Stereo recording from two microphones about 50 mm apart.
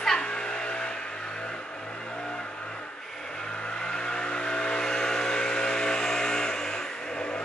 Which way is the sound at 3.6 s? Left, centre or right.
Centre.